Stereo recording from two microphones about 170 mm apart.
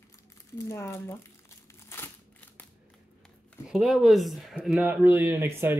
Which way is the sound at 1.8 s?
15° left (ahead or behind).